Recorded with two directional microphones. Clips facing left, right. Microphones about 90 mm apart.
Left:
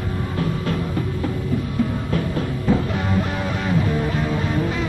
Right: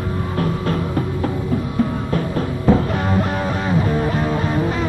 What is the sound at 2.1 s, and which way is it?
Music, 40° right (ahead or behind).